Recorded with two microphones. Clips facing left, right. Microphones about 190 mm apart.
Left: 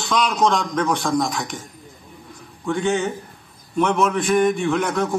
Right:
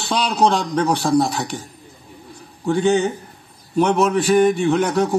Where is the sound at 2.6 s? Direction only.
35° right (ahead or behind).